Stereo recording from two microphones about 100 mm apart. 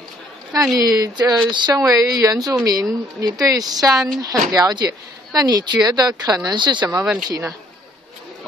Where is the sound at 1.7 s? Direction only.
35° right (ahead or behind).